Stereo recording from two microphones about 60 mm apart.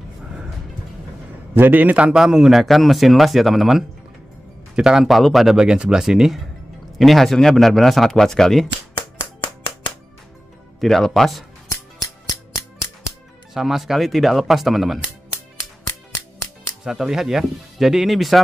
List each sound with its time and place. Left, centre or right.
1.5 s a man's voice: right
2.1 s speech: centre
2.6 s speech: centre
4.7 s speech: centre
5.0 s speech: centre
10.8 s speech: centre
11.7 s music: left
13.5 s speech: centre
16.8 s speech: centre